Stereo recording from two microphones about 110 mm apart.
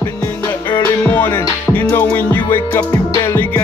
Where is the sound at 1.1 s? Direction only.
15° left (ahead or behind).